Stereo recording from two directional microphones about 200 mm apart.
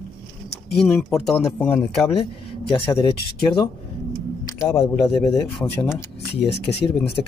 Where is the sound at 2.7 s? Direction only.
25° left (ahead or behind).